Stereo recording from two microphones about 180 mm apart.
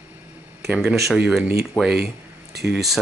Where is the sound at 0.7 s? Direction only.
Centre (ahead or behind).